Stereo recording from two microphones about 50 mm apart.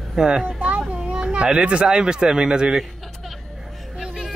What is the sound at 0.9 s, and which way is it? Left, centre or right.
Speech, centre.